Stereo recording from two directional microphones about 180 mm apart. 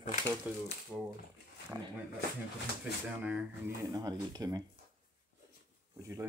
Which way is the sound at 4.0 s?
20° right (ahead or behind).